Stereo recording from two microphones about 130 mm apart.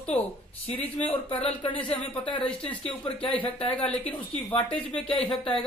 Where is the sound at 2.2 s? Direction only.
40° left (ahead or behind).